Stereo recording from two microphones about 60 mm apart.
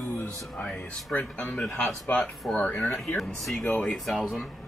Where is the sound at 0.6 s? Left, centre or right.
Left.